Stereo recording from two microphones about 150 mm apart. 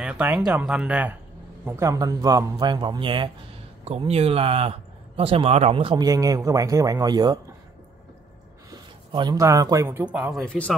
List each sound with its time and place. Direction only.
0.0 s speech: 5° right (ahead or behind)
1.7 s a man's voice: 20° right (ahead or behind); by 6.0 s 35° right (ahead or behind)
6.0 s a man's voice: 25° right (ahead or behind)
8.6 s a sound: 30° right (ahead or behind)
9.4 s speech: 20° right (ahead or behind)
10.4 s speech: 5° left (ahead or behind)